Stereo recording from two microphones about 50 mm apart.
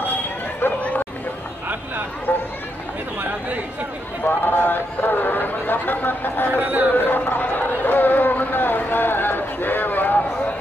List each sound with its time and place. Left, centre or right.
4.2 s chatter: left
6.6 s a man's voice: right
6.9 s chatter: left